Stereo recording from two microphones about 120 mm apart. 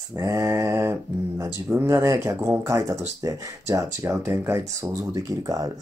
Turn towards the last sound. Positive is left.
turn(degrees=-30)  # may be behind; listen again after turning